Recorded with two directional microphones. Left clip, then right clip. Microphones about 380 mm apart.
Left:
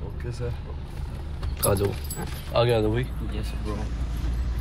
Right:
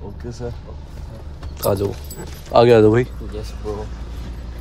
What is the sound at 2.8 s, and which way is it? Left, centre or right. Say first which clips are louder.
Speech: right 13 dB; right.